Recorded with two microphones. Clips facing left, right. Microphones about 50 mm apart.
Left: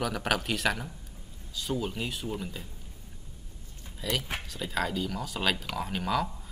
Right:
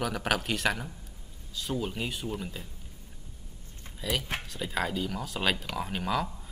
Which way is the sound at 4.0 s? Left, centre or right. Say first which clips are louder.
Even; centre.